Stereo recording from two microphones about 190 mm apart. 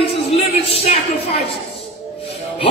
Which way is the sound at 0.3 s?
30° left (ahead or behind).